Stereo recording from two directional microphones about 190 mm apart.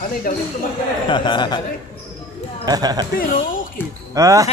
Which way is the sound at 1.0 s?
25° left (ahead or behind).